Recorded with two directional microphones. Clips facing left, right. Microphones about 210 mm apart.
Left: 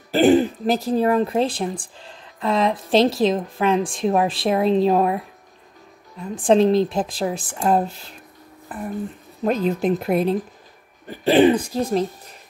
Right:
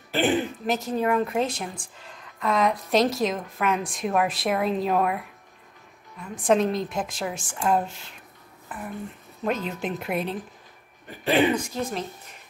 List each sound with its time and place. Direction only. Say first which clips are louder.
0.1 s a woman's voice: left 8 dB; 35° left (ahead or behind)